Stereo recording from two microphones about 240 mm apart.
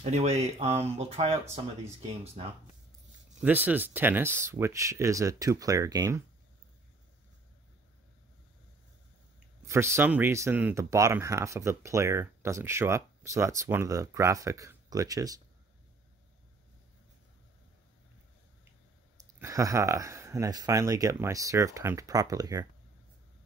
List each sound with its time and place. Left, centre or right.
0.0 s speech: right
3.3 s speech: centre
9.7 s speech: centre
19.3 s speech: centre